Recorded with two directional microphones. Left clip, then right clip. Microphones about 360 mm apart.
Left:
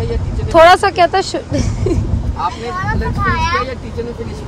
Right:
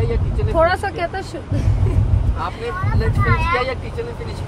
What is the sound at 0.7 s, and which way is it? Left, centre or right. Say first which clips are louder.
Speech: left 11 dB; left.